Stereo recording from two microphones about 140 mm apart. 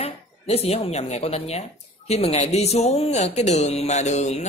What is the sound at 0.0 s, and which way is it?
A woman's voice, 45° left (ahead or behind).